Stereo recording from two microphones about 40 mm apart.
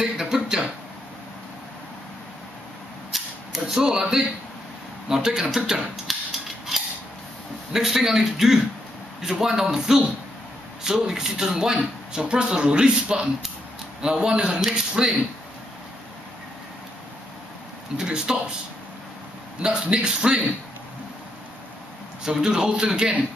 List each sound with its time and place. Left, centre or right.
0.0 s speech: centre
3.1 s a sound: centre
7.7 s speech: centre
17.9 s speech: centre
19.6 s speech: centre
22.2 s speech: centre